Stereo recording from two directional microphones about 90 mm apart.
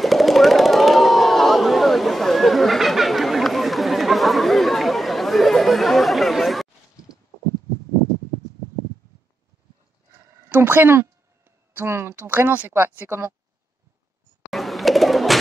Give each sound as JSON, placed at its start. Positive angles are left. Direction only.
{"t": 0.0, "sound": "a sound", "side_deg": 0}
{"t": 10.5, "sound": "speech", "side_deg": -20}
{"t": 14.5, "sound": "bird", "side_deg": 0}